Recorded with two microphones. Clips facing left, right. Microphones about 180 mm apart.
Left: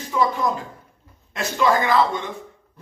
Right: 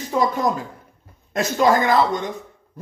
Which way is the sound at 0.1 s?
45° right (ahead or behind).